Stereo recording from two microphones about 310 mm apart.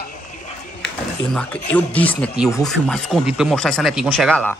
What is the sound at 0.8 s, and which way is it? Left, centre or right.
Speech, centre.